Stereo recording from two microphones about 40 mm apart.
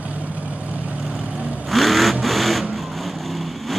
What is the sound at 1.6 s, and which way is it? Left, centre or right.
Vehicle, centre.